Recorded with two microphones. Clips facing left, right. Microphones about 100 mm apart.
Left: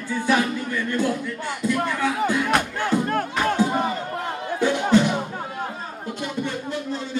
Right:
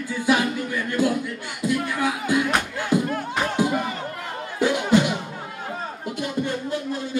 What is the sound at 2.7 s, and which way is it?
Crowd, 50° left (ahead or behind).